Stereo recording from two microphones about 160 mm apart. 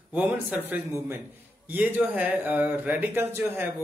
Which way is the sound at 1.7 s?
10° right (ahead or behind).